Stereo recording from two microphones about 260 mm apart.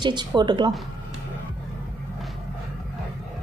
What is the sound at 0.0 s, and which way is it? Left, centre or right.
Speech, centre.